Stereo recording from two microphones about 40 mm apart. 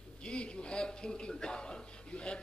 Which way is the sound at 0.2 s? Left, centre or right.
Left.